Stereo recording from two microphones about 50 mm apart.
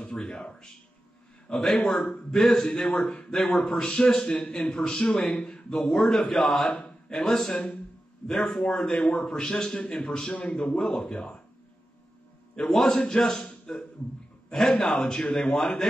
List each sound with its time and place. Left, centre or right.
0.0 s a man's voice: centre
7.5 s a man's voice: centre
12.5 s a man's voice: centre